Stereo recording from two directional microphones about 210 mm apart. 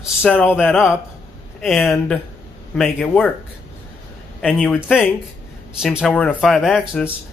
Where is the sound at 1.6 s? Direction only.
Centre (ahead or behind).